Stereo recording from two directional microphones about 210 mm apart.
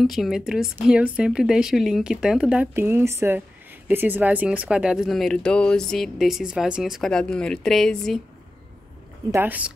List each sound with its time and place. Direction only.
0.0 s a woman's voice: centre (ahead or behind)
9.3 s speech: 10° right (ahead or behind)